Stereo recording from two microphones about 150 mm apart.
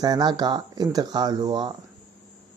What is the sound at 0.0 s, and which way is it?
Speech, 25° right (ahead or behind).